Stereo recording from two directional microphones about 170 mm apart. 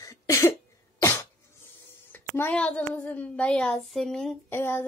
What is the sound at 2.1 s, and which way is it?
Speech, 10° left (ahead or behind).